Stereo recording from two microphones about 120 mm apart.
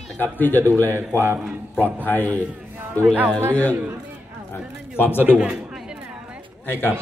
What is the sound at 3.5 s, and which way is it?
Speech, 15° left (ahead or behind).